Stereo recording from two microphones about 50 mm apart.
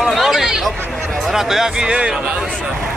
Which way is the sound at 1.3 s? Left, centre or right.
Centre.